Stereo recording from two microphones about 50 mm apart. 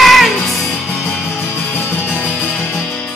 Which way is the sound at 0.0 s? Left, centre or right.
Centre.